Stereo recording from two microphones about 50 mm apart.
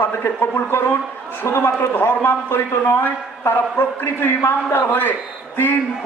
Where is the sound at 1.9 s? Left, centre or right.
Left.